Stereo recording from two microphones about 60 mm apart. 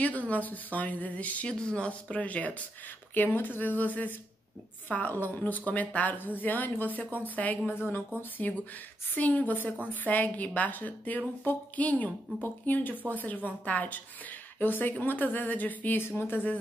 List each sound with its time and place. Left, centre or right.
0.3 s a woman's voice: left
16.0 s speech: left